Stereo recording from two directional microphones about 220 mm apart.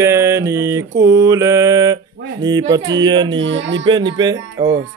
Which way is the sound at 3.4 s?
55° right (ahead or behind).